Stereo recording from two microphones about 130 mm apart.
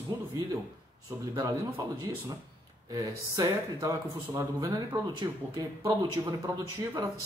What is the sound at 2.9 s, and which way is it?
A man's voice, 25° right (ahead or behind).